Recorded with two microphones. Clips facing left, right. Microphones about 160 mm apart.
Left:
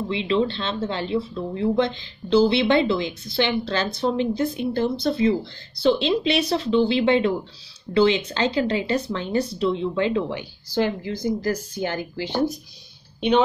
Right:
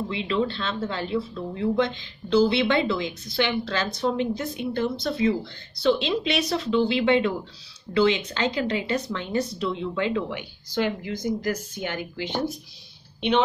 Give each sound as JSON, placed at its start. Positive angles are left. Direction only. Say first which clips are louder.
{"t": 0.1, "sound": "speech", "louder": "left 5 dB", "side_deg": 30}